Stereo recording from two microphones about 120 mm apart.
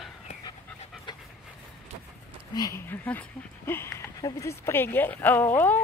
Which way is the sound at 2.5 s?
30° left (ahead or behind).